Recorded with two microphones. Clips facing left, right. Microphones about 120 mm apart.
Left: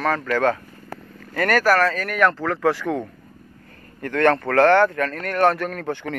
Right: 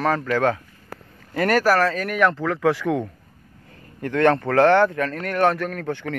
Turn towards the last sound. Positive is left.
turn(degrees=5)  # may be behind; listen again after turning